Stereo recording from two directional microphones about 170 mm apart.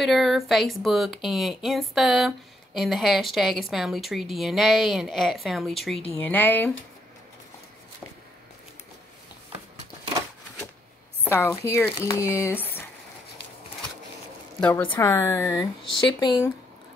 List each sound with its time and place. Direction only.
0.0 s speech: centre (ahead or behind)
6.1 s speech: 10° left (ahead or behind)
11.2 s speech: 15° left (ahead or behind)
14.6 s speech: 10° left (ahead or behind)